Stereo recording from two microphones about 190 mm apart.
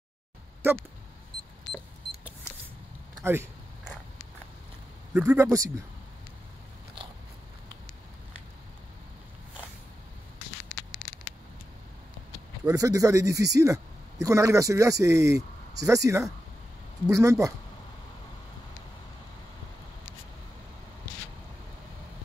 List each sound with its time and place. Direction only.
3.3 s a sound: 10° right (ahead or behind)
5.1 s a man's voice: 10° right (ahead or behind)
12.6 s a man's voice: 15° right (ahead or behind)